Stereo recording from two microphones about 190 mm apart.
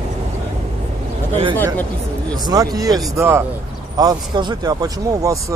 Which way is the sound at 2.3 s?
20° right (ahead or behind).